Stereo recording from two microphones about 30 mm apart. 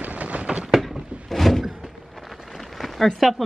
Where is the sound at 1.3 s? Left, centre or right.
Centre.